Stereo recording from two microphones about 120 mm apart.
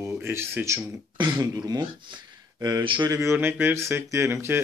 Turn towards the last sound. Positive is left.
turn(degrees=-20)  # may be behind; listen again after turning